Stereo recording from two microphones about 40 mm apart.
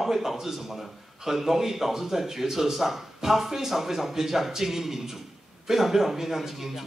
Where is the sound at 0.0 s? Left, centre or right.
Centre.